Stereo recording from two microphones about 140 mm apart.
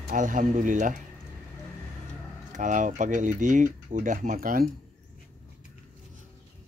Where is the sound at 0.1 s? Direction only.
70° right (ahead or behind).